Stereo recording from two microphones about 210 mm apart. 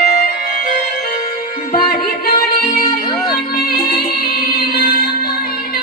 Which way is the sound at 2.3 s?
45° left (ahead or behind).